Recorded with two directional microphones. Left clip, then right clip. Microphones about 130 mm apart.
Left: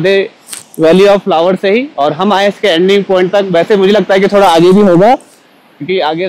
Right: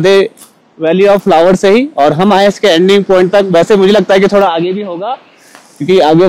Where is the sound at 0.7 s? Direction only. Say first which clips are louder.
Left 2 dB; 10° left (ahead or behind).